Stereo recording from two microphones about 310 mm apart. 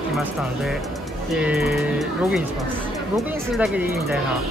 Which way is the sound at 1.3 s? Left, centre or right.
Centre.